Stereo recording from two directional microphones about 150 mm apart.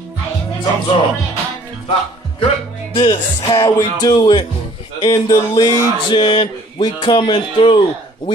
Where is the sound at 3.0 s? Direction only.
30° left (ahead or behind).